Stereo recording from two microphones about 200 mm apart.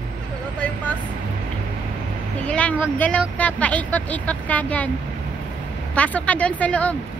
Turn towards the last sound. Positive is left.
turn(degrees=5)  # may be behind; listen again after turning